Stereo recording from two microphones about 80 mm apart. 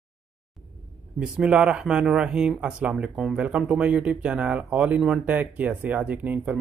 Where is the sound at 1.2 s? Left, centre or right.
Centre.